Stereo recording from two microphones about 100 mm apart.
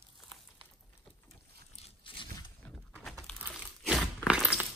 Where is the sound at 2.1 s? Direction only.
60° left (ahead or behind).